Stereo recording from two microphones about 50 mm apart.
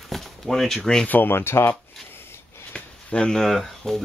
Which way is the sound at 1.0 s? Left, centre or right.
Left.